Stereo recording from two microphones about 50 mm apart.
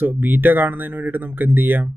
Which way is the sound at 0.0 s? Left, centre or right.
Right.